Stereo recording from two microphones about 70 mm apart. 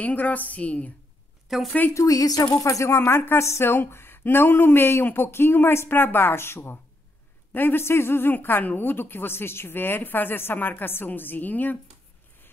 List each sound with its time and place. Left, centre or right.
0.0 s a woman's voice: left
1.5 s speech: centre
2.0 s a woman's voice: left